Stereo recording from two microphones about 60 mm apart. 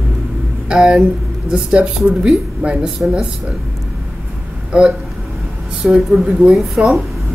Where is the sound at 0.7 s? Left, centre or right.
Centre.